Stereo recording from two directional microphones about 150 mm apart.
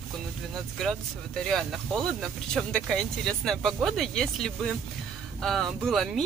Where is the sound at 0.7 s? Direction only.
5° left (ahead or behind).